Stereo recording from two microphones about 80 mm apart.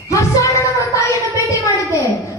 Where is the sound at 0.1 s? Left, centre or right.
Left.